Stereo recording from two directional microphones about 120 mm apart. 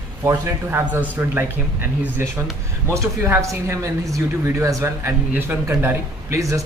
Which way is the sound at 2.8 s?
20° right (ahead or behind).